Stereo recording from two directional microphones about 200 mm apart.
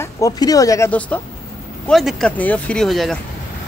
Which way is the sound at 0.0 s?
15° left (ahead or behind).